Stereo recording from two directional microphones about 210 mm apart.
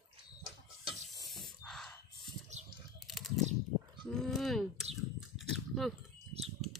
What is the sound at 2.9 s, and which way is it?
Typing, centre (ahead or behind).